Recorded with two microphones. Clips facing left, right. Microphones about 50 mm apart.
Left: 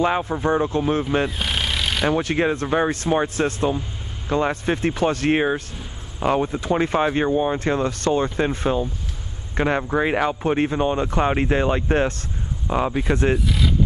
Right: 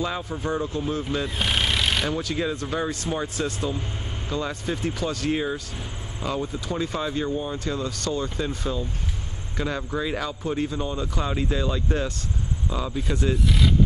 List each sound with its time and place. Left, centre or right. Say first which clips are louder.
0.0 s speech: left 8 dB; left
1.4 s rub: even; centre
2.0 s speech: left 6 dB; left
13.4 s speech: even; centre